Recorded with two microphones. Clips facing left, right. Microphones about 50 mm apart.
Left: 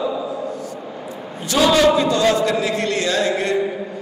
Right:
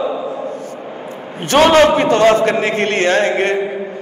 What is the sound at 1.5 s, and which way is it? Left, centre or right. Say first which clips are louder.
A man's voice: right 5 dB; right.